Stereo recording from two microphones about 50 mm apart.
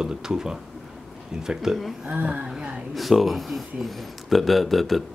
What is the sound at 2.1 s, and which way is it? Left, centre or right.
Speech, right.